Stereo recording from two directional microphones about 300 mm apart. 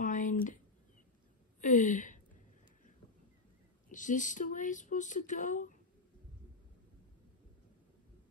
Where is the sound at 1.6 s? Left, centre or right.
Left.